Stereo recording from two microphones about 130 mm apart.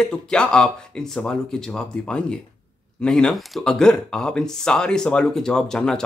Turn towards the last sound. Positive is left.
turn(degrees=5)  # may be behind; listen again after turning